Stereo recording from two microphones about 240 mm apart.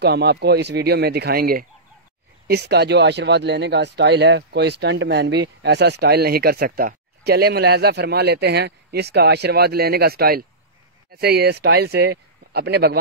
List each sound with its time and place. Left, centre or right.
0.0 s speech: right